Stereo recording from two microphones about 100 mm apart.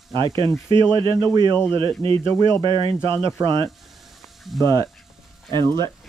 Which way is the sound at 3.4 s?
40° right (ahead or behind).